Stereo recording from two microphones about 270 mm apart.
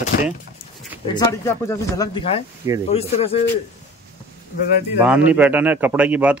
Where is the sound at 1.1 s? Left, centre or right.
Centre.